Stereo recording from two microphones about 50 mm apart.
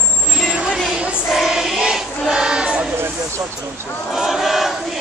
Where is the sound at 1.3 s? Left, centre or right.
Centre.